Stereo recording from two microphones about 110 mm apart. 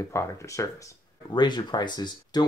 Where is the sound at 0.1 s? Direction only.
25° left (ahead or behind).